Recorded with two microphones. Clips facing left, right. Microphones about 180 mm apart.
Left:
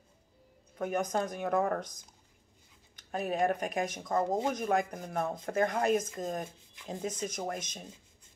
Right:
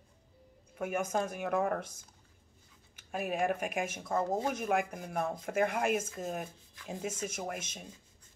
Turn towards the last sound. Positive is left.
turn(degrees=-5)  # may be behind; listen again after turning